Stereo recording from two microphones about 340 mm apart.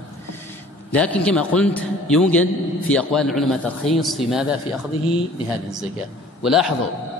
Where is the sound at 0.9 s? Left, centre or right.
Centre.